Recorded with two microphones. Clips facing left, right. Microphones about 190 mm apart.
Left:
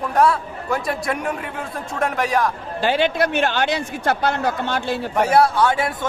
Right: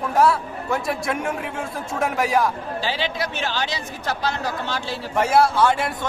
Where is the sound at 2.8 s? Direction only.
55° left (ahead or behind).